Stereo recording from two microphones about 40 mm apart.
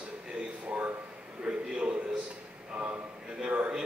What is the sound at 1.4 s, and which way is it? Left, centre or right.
Speech, right.